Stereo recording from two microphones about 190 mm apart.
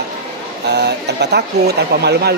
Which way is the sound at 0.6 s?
65° right (ahead or behind).